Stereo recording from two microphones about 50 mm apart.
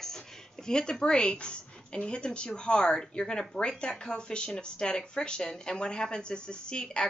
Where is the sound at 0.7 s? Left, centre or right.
Centre.